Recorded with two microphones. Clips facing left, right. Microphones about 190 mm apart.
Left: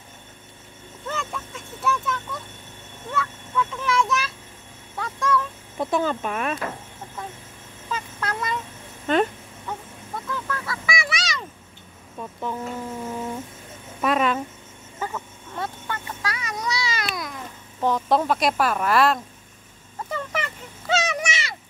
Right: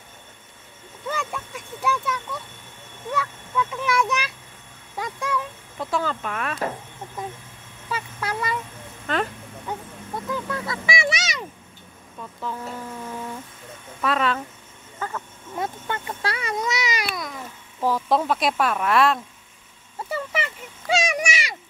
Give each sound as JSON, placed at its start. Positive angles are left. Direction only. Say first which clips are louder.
{"t": 1.0, "sound": "speech", "louder": "right 2 dB", "side_deg": -10}
{"t": 4.9, "sound": "a sound", "louder": "left 3 dB", "side_deg": -15}
{"t": 5.8, "sound": "speech", "louder": "left 3 dB", "side_deg": 20}
{"t": 7.9, "sound": "speech", "louder": "right 1 dB", "side_deg": -10}
{"t": 9.0, "sound": "speech", "louder": "left 5 dB", "side_deg": 20}
{"t": 10.3, "sound": "honk", "louder": "right 2 dB", "side_deg": -20}
{"t": 12.2, "sound": "speech", "louder": "left 2 dB", "side_deg": 15}
{"t": 15.0, "sound": "a sound", "louder": "left 1 dB", "side_deg": 10}
{"t": 15.5, "sound": "speech", "louder": "right 2 dB", "side_deg": -20}
{"t": 17.1, "sound": "speech", "louder": "even", "side_deg": 0}
{"t": 20.9, "sound": "a sound", "louder": "right 1 dB", "side_deg": -15}